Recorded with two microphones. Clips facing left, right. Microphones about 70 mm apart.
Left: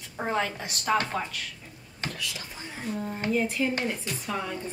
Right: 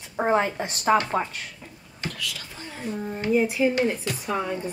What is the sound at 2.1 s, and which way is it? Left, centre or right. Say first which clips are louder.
Speech: right 2 dB; left.